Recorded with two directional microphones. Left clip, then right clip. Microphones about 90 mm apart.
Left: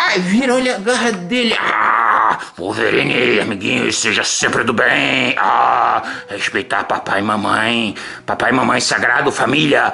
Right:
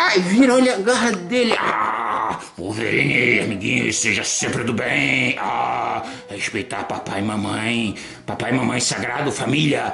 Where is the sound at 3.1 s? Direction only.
60° left (ahead or behind).